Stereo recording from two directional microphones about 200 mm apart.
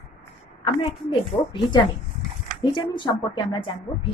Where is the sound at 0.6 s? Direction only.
30° left (ahead or behind).